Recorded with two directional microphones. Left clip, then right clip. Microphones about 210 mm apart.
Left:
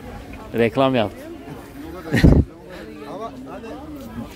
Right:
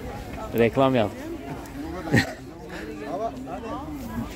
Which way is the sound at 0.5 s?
20° left (ahead or behind).